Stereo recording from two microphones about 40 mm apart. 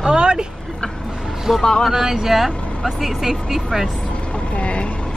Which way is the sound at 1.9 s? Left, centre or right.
Centre.